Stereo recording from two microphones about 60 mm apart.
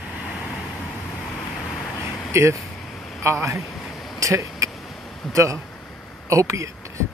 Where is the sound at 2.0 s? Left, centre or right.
Right.